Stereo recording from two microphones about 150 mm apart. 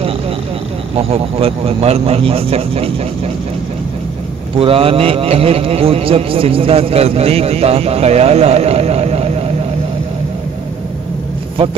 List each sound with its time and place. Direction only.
0.9 s a man's voice: 40° right (ahead or behind)
4.6 s a man's voice: 40° right (ahead or behind)